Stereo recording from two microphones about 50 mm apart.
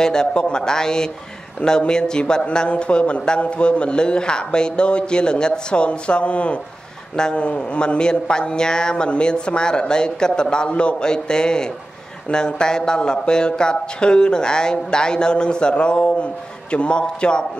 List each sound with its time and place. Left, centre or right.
0.0 s a man's voice: centre